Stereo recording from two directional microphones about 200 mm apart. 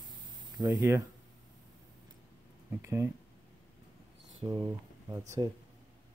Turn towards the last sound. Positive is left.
turn(degrees=-15)  # may be behind; listen again after turning